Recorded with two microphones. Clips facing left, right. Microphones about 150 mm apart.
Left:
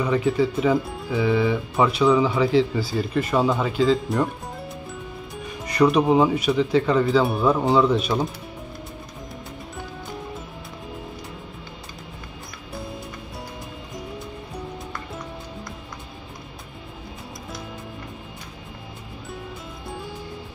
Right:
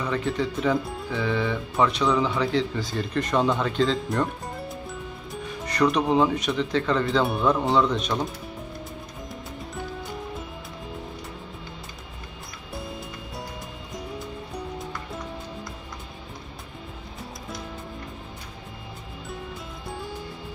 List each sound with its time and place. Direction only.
0.0 s speech: 10° left (ahead or behind)